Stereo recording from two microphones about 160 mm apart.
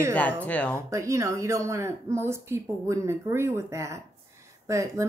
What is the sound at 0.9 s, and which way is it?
Speech, 20° right (ahead or behind).